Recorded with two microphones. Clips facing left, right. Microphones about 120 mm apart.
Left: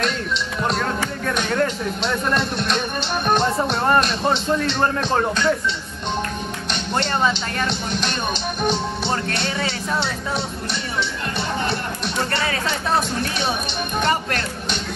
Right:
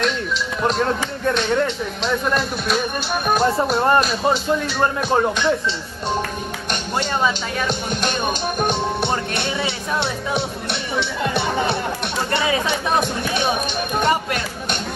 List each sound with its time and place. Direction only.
1.5 s speech: centre (ahead or behind)
4.0 s music: 5° right (ahead or behind)
7.0 s speech: 5° right (ahead or behind)
7.9 s music: 50° right (ahead or behind)
9.9 s speech: 60° right (ahead or behind)
12.3 s music: 15° right (ahead or behind)